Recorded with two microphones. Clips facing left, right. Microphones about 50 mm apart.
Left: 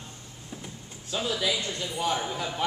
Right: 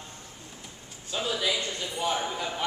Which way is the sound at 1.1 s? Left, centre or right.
Centre.